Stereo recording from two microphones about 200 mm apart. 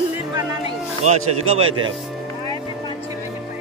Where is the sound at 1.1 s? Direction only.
30° right (ahead or behind).